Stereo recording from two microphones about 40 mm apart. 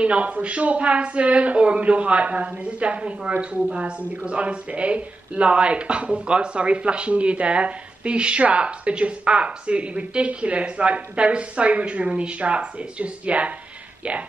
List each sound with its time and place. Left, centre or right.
0.0 s speech: right